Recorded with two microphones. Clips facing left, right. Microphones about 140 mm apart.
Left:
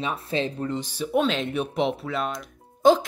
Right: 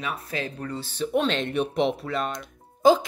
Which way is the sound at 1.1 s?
Centre (ahead or behind).